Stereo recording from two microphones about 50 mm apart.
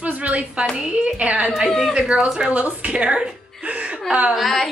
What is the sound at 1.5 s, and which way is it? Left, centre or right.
Speech, centre.